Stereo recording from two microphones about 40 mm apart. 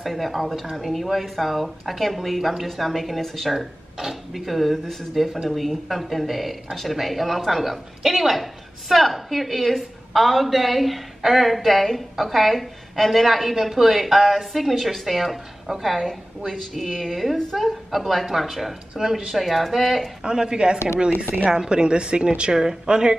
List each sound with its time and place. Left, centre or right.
0.0 s speech: centre
3.5 s speech: centre
20.2 s a woman's voice: centre